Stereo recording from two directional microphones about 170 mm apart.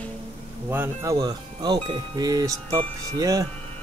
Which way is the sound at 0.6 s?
15° right (ahead or behind).